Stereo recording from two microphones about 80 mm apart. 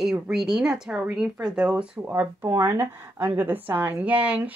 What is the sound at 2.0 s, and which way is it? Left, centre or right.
Speech, right.